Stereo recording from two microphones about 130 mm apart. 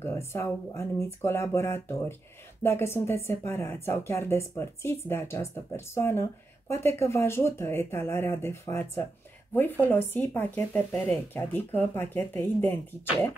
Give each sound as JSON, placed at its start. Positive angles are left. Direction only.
{"t": 0.0, "sound": "a woman's voice", "side_deg": 20}